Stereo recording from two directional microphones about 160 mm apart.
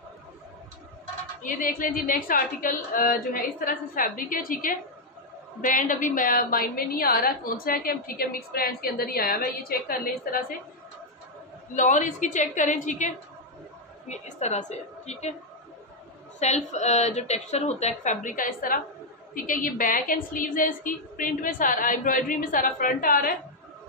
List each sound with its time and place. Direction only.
1.4 s a woman's voice: 60° left (ahead or behind)
11.7 s a woman's voice: 50° left (ahead or behind)
16.3 s a woman's voice: 45° left (ahead or behind); by 23.3 s 60° left (ahead or behind)